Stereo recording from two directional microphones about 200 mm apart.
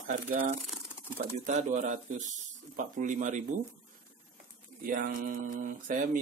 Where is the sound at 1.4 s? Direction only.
35° right (ahead or behind).